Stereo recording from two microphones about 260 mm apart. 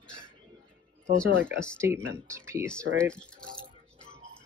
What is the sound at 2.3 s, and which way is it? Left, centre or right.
Speech, centre.